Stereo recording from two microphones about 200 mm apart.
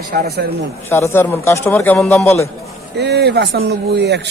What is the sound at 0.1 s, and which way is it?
Speech, 50° right (ahead or behind).